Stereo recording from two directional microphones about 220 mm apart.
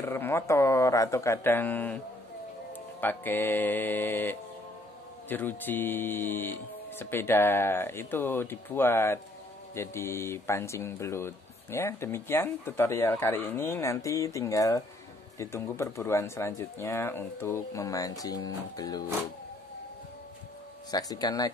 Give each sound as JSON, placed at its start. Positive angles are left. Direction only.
{"t": 0.0, "sound": "speech", "side_deg": 10}
{"t": 3.0, "sound": "speech", "side_deg": 10}
{"t": 20.9, "sound": "speech", "side_deg": 15}